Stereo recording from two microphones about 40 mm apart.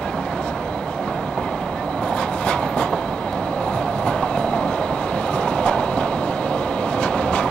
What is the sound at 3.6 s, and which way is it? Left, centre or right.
Train, left.